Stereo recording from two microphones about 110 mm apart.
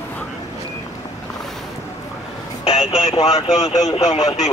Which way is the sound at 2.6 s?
70° left (ahead or behind).